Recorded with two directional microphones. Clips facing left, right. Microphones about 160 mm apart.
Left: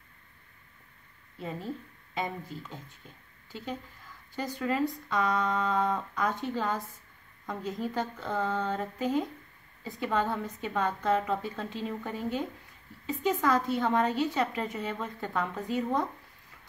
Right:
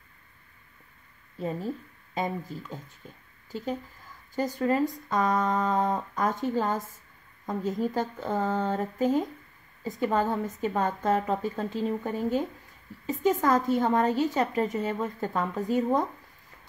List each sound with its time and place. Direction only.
2.1 s a woman's voice: 40° right (ahead or behind)
4.4 s a woman's voice: 40° right (ahead or behind)